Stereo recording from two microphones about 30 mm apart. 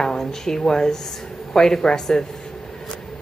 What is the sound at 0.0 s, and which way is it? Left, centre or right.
A woman's voice, centre.